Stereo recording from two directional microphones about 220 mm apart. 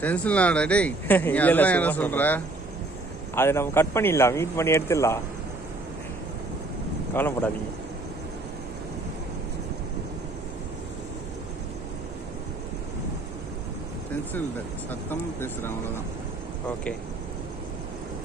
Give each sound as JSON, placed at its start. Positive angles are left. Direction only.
{"t": 0.0, "sound": "speech", "side_deg": 5}
{"t": 7.2, "sound": "speech", "side_deg": 10}
{"t": 14.9, "sound": "speech", "side_deg": 10}